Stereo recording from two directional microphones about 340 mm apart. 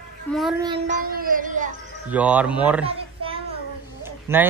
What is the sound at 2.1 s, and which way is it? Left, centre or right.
Speech, centre.